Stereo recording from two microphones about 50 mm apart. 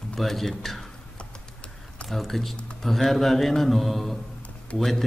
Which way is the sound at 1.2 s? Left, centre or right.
Centre.